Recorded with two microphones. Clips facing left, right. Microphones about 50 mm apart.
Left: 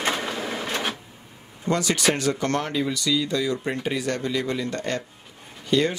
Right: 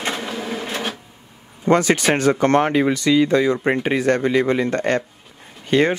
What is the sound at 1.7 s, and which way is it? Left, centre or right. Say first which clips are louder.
Speech: right 7 dB; right.